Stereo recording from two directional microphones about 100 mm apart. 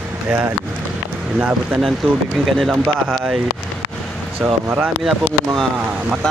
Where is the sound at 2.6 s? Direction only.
Centre (ahead or behind).